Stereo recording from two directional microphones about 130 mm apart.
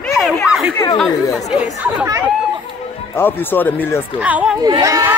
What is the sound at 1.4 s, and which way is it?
Speech, 5° right (ahead or behind).